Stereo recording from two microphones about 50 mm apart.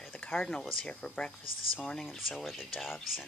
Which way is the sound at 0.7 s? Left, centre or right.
Centre.